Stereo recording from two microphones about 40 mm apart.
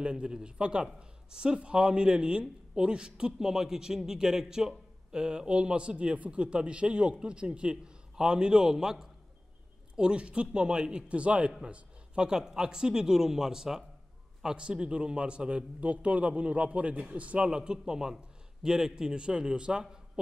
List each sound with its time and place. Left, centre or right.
0.0 s a man's voice: right
3.3 s a man's voice: centre
9.9 s a man's voice: right
12.2 s a man's voice: centre; by 17.5 s right
17.5 s a man's voice: right